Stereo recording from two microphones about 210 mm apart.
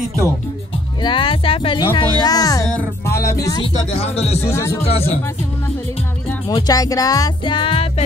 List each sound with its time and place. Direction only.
1.0 s speech: 25° left (ahead or behind)
2.7 s music: 15° left (ahead or behind)
3.9 s speech: 30° left (ahead or behind)
4.4 s speech: 15° left (ahead or behind)
6.5 s speech: 15° left (ahead or behind)